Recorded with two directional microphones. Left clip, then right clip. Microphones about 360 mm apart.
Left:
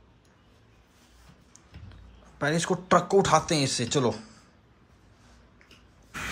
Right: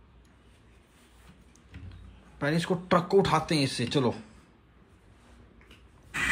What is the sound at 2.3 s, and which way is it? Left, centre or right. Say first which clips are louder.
Speech: left 2 dB; centre.